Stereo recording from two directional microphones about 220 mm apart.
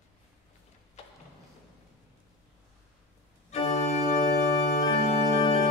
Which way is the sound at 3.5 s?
30° left (ahead or behind).